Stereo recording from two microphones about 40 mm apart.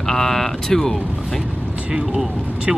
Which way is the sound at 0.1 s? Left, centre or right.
Centre.